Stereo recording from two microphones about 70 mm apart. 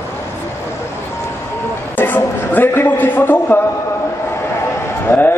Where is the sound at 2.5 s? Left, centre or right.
Left.